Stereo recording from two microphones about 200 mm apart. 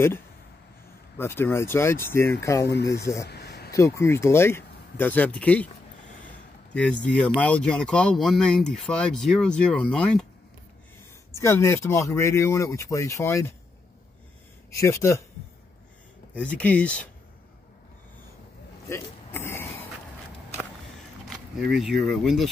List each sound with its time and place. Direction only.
1.1 s speech: 10° left (ahead or behind)
2.7 s speech: 55° left (ahead or behind)
3.0 s speech: 15° left (ahead or behind)
3.3 s a sound: 55° left (ahead or behind)
3.7 s speech: 15° left (ahead or behind)
6.7 s speech: 5° left (ahead or behind)
11.3 s speech: 15° left (ahead or behind)
14.8 s speech: 15° left (ahead or behind)
16.3 s speech: 5° left (ahead or behind)
18.9 s a sound: 10° left (ahead or behind)
21.7 s speech: centre (ahead or behind)